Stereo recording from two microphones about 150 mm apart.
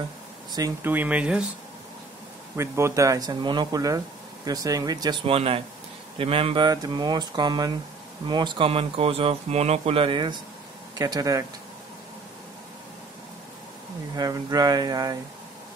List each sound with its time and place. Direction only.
0.5 s speech: 25° right (ahead or behind)
0.8 s speech: 10° right (ahead or behind)
2.5 s speech: 20° right (ahead or behind)
14.1 s speech: 25° right (ahead or behind)